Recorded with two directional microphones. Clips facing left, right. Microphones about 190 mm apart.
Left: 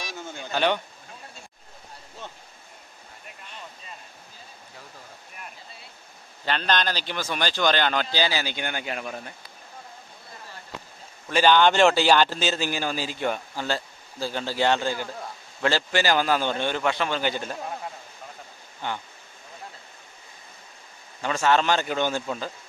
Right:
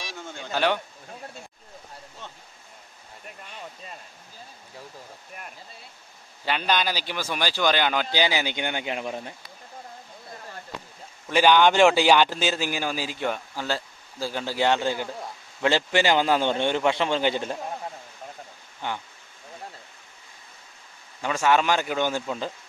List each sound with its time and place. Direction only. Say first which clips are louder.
0.3 s a sound: even; centre (ahead or behind)
6.4 s a man's voice: even; 10° right (ahead or behind)
11.2 s a man's voice: right 1 dB; 15° right (ahead or behind)
18.8 s a man's voice: even; 15° right (ahead or behind)
21.2 s a man's voice: even; 10° right (ahead or behind)